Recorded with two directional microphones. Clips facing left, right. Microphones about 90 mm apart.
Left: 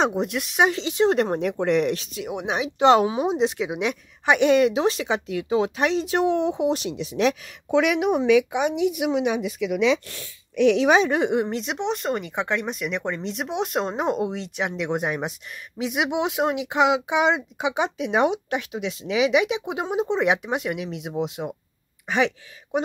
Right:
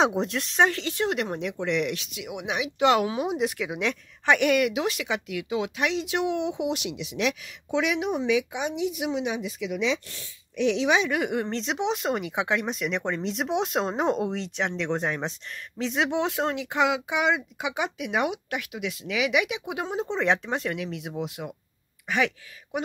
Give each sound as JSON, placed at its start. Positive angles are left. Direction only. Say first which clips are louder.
{"t": 0.0, "sound": "speech", "louder": "left 1 dB", "side_deg": 5}
{"t": 1.0, "sound": "speech", "louder": "left 8 dB", "side_deg": 35}
{"t": 7.7, "sound": "speech", "louder": "left 6 dB", "side_deg": 55}
{"t": 11.0, "sound": "speech", "louder": "left 5 dB", "side_deg": 30}
{"t": 11.4, "sound": "speech", "louder": "left 1 dB", "side_deg": 5}